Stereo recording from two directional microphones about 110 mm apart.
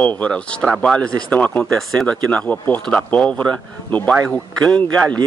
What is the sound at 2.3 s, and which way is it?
Speech, 15° left (ahead or behind).